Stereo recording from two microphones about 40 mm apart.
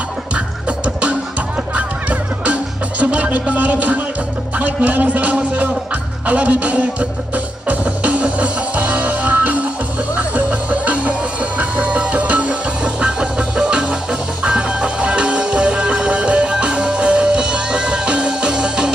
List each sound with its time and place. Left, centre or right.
1.8 s music: right
4.6 s a man's voice: right
6.2 s music: right; by 18.9 s centre